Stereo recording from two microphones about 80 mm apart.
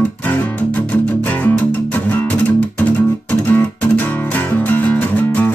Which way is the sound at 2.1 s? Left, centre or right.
Left.